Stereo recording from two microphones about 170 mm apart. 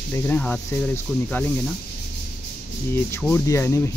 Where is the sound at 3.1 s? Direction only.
10° left (ahead or behind).